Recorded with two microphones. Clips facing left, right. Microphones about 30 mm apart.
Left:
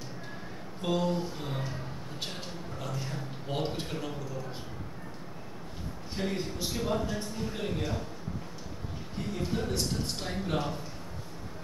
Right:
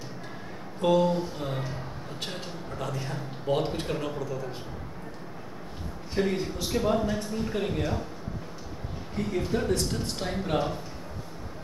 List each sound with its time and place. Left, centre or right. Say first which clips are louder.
0.9 s speech: right 3 dB; centre
2.8 s speech: right 4 dB; centre
6.1 s speech: right 6 dB; centre
9.3 s speech: right 5 dB; centre